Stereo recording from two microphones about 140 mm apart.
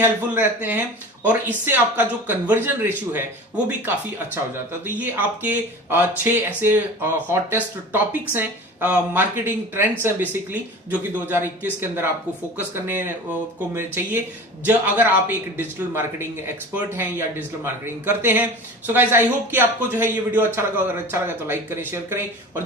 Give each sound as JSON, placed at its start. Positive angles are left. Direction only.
{"t": 0.0, "sound": "speech", "side_deg": -15}